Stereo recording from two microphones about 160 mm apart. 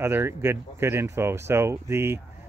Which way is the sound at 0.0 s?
15° right (ahead or behind).